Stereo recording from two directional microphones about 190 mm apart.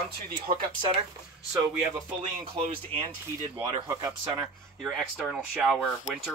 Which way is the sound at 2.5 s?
30° right (ahead or behind).